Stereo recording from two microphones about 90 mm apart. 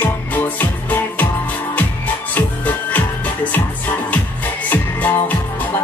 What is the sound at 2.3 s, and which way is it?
Music, 20° left (ahead or behind).